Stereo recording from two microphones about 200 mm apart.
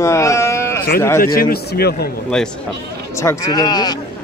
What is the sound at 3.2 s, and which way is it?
Speech, 15° left (ahead or behind).